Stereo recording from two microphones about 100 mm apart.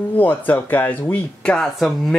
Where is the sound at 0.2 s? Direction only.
15° left (ahead or behind).